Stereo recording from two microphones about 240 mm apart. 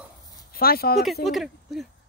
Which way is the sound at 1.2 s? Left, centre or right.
Centre.